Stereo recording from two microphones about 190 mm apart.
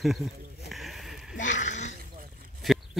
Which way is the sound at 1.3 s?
40° left (ahead or behind).